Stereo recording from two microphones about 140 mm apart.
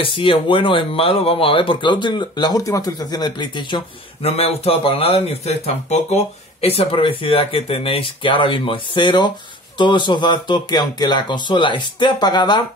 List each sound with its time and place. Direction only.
0.0 s speech: 40° left (ahead or behind)
4.2 s speech: 45° left (ahead or behind); by 12.6 s 30° left (ahead or behind)